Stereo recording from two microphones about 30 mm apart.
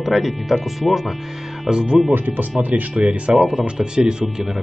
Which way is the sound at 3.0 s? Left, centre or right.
Right.